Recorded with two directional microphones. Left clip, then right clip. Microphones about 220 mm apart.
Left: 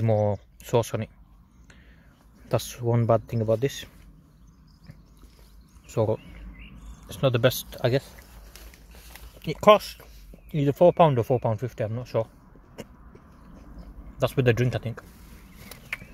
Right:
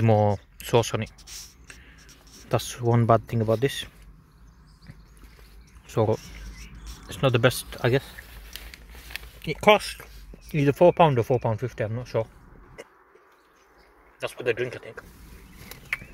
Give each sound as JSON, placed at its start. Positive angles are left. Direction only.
{"t": 0.0, "sound": "speech", "side_deg": -5}
{"t": 2.4, "sound": "speech", "side_deg": 5}
{"t": 5.9, "sound": "speech", "side_deg": 5}
{"t": 9.4, "sound": "speech", "side_deg": 10}
{"t": 12.8, "sound": "a sound", "side_deg": 15}
{"t": 14.1, "sound": "speech", "side_deg": 15}
{"t": 15.9, "sound": "a sound", "side_deg": 5}